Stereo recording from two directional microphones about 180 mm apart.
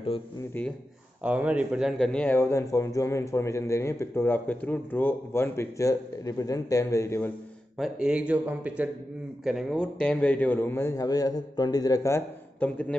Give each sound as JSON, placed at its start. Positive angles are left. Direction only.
{"t": 1.2, "sound": "speech", "side_deg": -5}
{"t": 7.8, "sound": "speech", "side_deg": -5}